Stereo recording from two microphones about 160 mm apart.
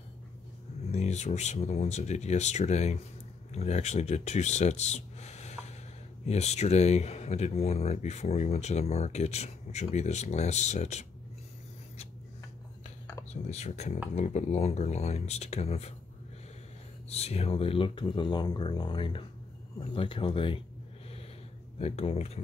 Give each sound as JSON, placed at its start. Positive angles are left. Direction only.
{"t": 0.9, "sound": "speech", "side_deg": 45}
{"t": 13.3, "sound": "speech", "side_deg": 45}
{"t": 17.1, "sound": "speech", "side_deg": 40}
{"t": 21.7, "sound": "speech", "side_deg": 40}